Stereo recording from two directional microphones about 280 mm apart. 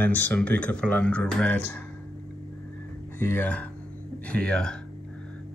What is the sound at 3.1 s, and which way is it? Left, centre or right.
Speech, centre.